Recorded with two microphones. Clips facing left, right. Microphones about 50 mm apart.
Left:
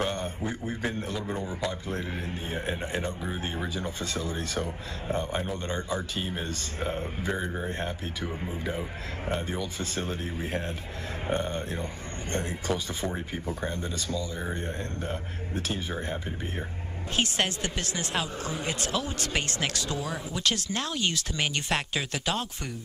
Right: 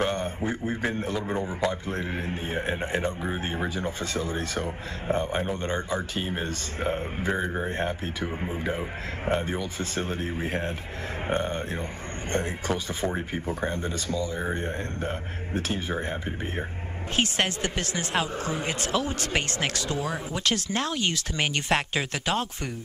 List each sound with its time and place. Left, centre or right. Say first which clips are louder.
0.0 s speech: right 3 dB; right